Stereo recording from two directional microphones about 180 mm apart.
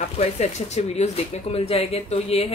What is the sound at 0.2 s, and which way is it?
Speech, 35° left (ahead or behind).